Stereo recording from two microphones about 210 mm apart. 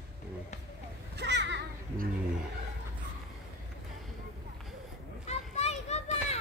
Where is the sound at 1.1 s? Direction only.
55° right (ahead or behind).